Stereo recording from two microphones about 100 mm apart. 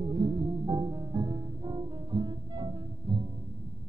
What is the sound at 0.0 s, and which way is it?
Music, 40° right (ahead or behind).